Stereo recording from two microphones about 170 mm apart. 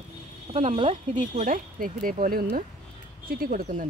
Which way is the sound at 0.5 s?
35° right (ahead or behind).